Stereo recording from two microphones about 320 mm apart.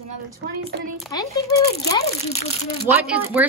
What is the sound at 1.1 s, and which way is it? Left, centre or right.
A child's voice, centre.